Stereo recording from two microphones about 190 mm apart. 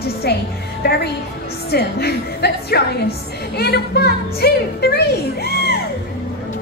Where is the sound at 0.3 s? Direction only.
60° left (ahead or behind).